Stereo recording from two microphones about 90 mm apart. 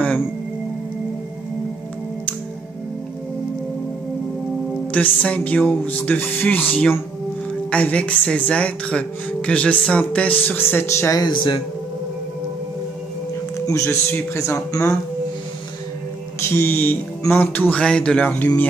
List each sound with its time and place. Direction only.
4.9 s speech: 15° left (ahead or behind)
11.1 s speech: 55° left (ahead or behind)
13.7 s a man's voice: 35° left (ahead or behind)
16.4 s speech: 25° left (ahead or behind)